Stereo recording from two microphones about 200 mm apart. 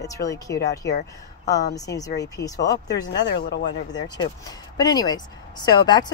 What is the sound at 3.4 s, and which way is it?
Speech, 55° left (ahead or behind).